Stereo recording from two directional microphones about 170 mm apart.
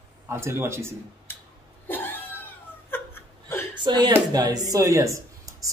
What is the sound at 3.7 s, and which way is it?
Speech, 25° right (ahead or behind).